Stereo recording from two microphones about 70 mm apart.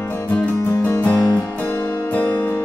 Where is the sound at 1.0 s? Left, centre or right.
Left.